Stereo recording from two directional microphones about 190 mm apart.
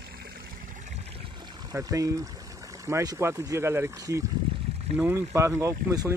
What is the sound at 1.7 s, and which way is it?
Speech, 15° right (ahead or behind).